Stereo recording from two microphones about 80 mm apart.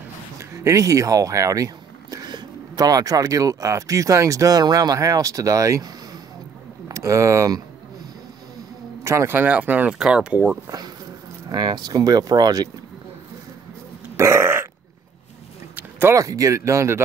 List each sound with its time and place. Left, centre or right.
0.4 s a sound: right
2.3 s speech: right
6.9 s speech: right
9.0 s speech: right; by 10.4 s centre
11.4 s speech: right
14.1 s burping: right
15.7 s a sound: right
16.2 s speech: right